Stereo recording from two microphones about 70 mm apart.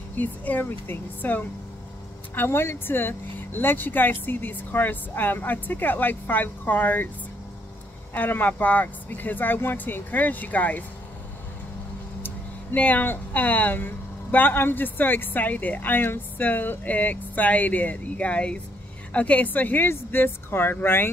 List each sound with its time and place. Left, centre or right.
0.1 s speech: left
8.1 s speech: left
12.7 s speech: left